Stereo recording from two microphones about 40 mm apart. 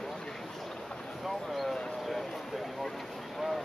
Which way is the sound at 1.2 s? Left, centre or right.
Centre.